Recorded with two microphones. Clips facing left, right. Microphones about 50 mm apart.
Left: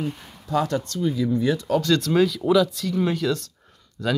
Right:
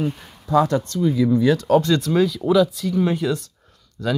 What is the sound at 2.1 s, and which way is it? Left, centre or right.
Speech, centre.